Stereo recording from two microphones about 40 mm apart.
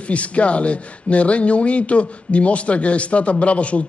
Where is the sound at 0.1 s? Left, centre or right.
Left.